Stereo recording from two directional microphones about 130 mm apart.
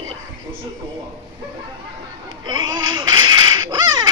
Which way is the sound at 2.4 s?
35° right (ahead or behind).